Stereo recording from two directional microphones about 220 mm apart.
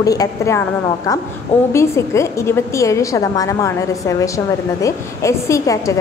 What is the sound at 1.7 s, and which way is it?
A woman's voice, 10° left (ahead or behind).